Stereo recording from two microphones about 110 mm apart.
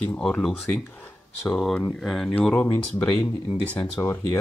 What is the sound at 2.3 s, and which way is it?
Speech, 10° left (ahead or behind).